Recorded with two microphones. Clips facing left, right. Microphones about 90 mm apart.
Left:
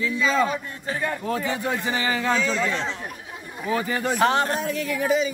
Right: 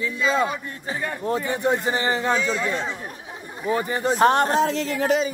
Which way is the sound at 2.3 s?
10° right (ahead or behind).